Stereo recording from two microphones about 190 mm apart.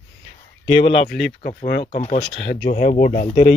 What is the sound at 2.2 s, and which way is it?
Speech, 70° left (ahead or behind).